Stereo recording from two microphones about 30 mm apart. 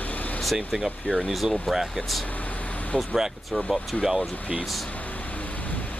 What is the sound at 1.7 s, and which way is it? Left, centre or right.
Speech, centre.